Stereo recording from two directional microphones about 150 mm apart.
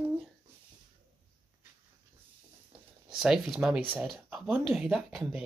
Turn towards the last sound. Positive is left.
turn(degrees=-5)  # may be behind; listen again after turning